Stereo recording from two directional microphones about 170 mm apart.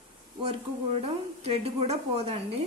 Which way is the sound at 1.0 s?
35° right (ahead or behind).